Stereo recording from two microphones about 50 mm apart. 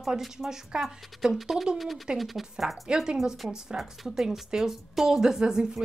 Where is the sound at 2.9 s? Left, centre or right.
Centre.